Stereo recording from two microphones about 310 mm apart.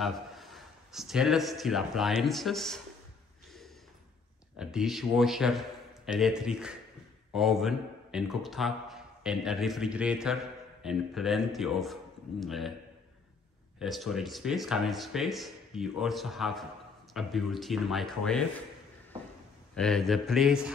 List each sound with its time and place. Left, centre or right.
0.0 s a man's voice: centre
4.6 s speech: centre
13.7 s speech: centre
19.7 s speech: centre